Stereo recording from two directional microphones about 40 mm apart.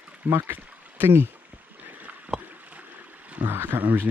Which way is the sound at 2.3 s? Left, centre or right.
Right.